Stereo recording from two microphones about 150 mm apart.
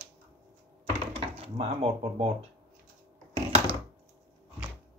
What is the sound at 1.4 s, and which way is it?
Speech, 40° right (ahead or behind).